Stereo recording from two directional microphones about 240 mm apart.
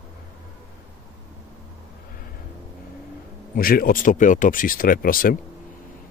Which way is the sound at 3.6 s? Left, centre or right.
Left.